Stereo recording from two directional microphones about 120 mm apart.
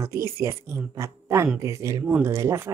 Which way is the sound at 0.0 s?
25° right (ahead or behind).